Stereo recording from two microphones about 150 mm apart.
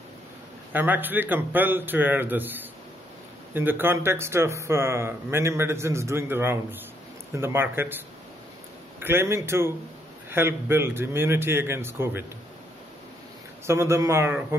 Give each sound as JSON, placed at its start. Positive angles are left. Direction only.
{"t": 0.7, "sound": "a man's voice", "side_deg": -10}
{"t": 9.0, "sound": "a man's voice", "side_deg": -15}
{"t": 13.7, "sound": "a man's voice", "side_deg": -20}